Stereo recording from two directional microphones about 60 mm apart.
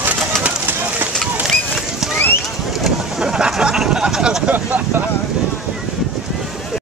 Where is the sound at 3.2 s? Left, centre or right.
Centre.